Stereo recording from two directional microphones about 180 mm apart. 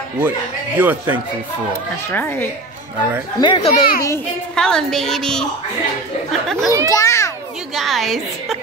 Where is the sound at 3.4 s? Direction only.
25° left (ahead or behind).